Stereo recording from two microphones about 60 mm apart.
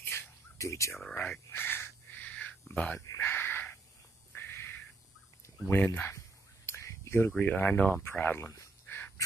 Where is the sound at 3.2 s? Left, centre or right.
Left.